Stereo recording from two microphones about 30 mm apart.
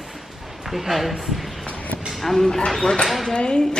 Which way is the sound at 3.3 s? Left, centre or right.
Left.